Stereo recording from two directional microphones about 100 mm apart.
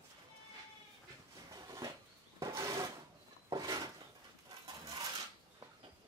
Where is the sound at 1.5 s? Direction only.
40° right (ahead or behind).